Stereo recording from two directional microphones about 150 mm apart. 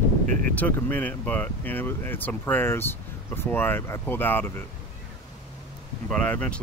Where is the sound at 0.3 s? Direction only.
65° right (ahead or behind).